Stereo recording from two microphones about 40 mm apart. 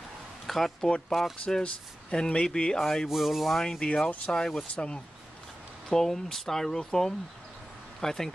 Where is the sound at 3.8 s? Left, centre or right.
Left.